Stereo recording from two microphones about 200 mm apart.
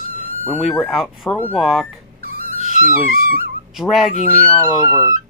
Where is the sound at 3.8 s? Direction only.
Centre (ahead or behind).